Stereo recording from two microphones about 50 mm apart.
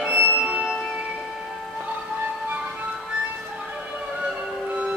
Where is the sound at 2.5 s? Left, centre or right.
Right.